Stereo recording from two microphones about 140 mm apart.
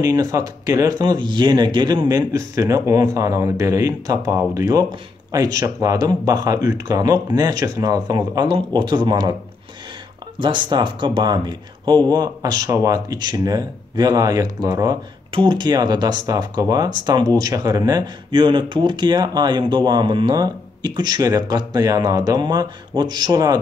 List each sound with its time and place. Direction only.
0.0 s speech: 25° right (ahead or behind)
10.4 s speech: 35° right (ahead or behind)